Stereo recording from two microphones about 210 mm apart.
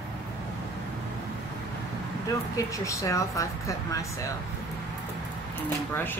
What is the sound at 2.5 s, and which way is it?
A woman's voice, 15° left (ahead or behind).